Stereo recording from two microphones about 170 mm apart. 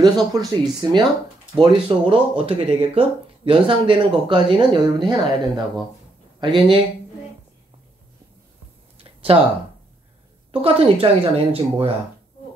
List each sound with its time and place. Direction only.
0.0 s speech: 25° right (ahead or behind)
6.4 s speech: 30° right (ahead or behind)
8.9 s a sound: 35° right (ahead or behind)
10.5 s speech: 35° right (ahead or behind)